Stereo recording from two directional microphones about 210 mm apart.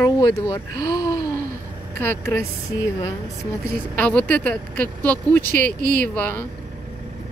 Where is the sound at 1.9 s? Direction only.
10° left (ahead or behind).